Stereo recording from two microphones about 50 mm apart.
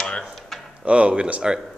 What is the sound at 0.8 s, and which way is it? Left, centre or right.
Speech, right.